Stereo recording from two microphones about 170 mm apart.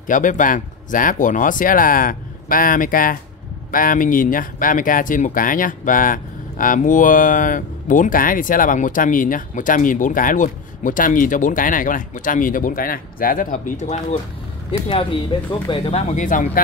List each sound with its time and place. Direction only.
0.0 s speech: 50° left (ahead or behind)
14.7 s speech: 35° left (ahead or behind); by 16.6 s 50° left (ahead or behind)